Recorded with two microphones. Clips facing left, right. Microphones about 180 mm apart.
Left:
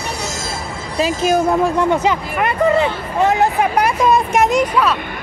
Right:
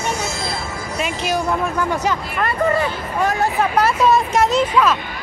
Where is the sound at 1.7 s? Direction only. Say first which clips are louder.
Left 5 dB; 20° left (ahead or behind).